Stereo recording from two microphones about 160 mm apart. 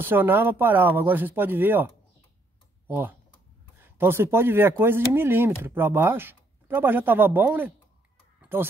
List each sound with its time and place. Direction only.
0.0 s speech: 15° right (ahead or behind)
2.9 s speech: 10° right (ahead or behind)
8.4 s a sound: 10° right (ahead or behind)